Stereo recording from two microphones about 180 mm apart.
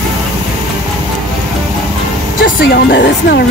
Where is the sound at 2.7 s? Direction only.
65° left (ahead or behind).